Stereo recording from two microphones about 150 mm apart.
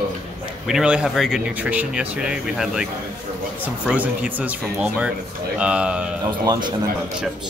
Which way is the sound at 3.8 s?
10° right (ahead or behind).